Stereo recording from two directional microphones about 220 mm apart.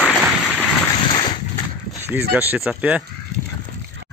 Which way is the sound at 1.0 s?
20° left (ahead or behind).